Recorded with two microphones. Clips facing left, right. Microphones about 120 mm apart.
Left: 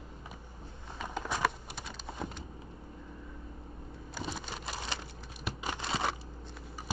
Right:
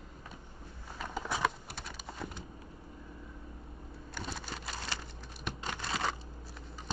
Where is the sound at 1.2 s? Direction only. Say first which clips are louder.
Left 1 dB; 5° left (ahead or behind).